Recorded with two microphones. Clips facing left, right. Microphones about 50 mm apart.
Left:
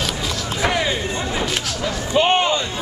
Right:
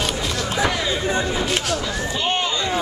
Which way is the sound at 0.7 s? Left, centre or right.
Left.